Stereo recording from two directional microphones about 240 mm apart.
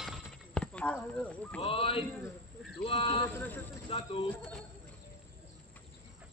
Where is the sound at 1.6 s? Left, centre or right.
Left.